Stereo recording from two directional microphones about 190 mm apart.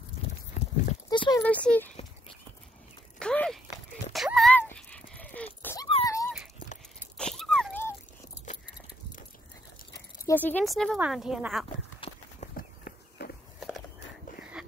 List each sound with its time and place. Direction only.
0.6 s horse: 40° left (ahead or behind)
1.1 s a sound: 25° left (ahead or behind)
1.4 s speech: 5° left (ahead or behind)
3.2 s a sound: 5° left (ahead or behind)
7.0 s a sound: 5° left (ahead or behind)
10.2 s speech: 10° left (ahead or behind)
12.0 s horse: 30° left (ahead or behind)
12.5 s walk: 50° left (ahead or behind)
13.6 s walk: centre (ahead or behind)